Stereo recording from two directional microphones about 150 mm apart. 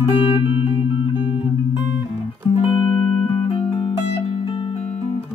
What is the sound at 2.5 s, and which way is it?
Music, 35° left (ahead or behind).